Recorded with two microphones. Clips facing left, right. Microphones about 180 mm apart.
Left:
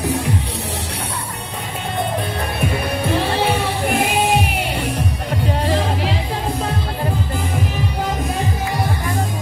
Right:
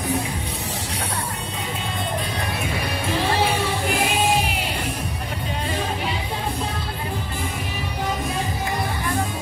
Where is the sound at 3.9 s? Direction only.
60° left (ahead or behind).